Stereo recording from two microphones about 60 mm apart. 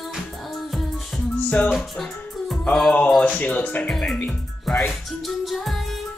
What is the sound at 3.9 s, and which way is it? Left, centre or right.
Speech, centre.